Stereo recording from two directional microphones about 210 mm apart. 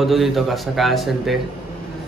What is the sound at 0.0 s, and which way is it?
Speech, centre (ahead or behind).